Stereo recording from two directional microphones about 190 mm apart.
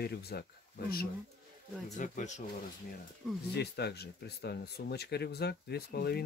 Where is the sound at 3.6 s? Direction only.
60° left (ahead or behind).